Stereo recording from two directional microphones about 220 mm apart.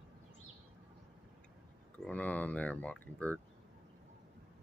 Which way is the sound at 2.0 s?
5° left (ahead or behind).